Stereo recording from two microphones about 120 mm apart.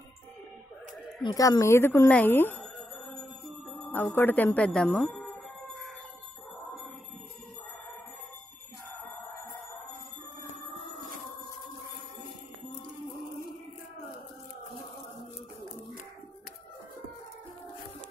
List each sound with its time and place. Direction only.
1.2 s a woman's voice: 35° left (ahead or behind); by 2.6 s 15° left (ahead or behind)
2.6 s music: centre (ahead or behind)
3.8 s speech: 15° left (ahead or behind)
5.2 s a sound: 10° left (ahead or behind)